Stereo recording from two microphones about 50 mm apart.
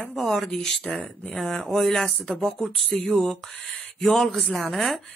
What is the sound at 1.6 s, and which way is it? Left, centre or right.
Speech, centre.